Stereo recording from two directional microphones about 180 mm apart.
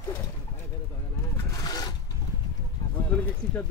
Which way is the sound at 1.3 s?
20° left (ahead or behind).